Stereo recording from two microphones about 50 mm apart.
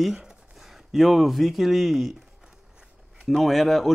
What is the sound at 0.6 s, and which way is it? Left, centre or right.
Speech, centre.